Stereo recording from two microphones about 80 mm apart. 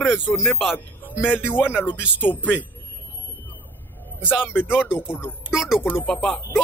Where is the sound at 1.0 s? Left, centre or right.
Left.